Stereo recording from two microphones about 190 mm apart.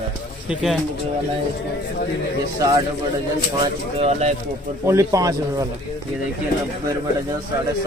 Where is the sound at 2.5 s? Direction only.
15° right (ahead or behind).